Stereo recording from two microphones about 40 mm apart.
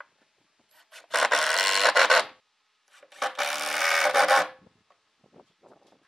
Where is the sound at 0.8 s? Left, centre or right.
Centre.